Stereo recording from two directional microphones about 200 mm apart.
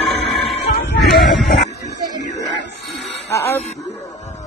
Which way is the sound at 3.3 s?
10° left (ahead or behind).